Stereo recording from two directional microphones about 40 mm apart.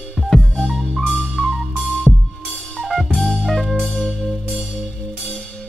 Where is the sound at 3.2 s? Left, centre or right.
Left.